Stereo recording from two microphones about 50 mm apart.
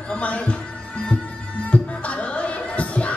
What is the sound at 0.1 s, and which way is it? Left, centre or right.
Speech, left.